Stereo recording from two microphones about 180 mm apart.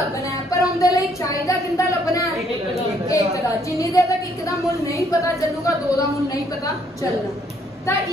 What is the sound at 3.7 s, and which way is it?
Speech, 20° left (ahead or behind).